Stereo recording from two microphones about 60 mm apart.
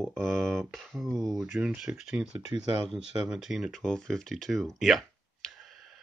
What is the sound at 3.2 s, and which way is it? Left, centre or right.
Speech, centre.